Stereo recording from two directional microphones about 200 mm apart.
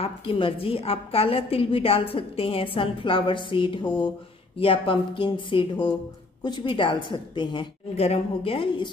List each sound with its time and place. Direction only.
0.0 s a woman's voice: 25° left (ahead or behind)